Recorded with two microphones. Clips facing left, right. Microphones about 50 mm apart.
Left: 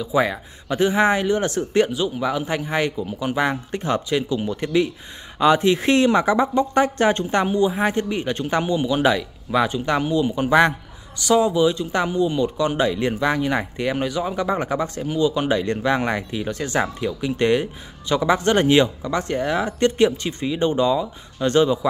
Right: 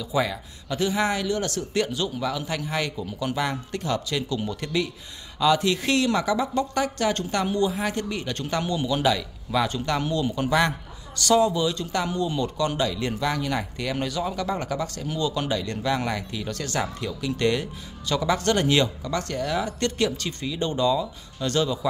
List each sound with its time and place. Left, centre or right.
0.0 s speech: left
1.9 s speech: centre